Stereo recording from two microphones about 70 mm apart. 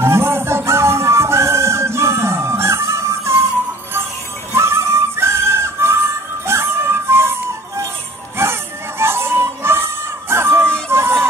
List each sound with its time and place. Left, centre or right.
0.0 s music: right
4.6 s music: right